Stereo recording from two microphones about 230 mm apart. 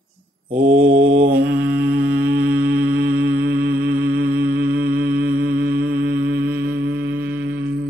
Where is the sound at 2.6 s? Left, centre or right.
Right.